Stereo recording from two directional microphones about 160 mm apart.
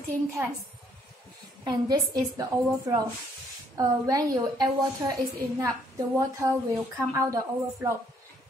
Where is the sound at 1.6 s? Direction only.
25° right (ahead or behind).